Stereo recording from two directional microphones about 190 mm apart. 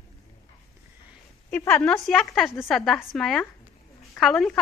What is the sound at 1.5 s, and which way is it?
Speech, 10° left (ahead or behind).